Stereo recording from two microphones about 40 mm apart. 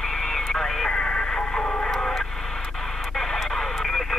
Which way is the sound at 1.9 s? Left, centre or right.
Centre.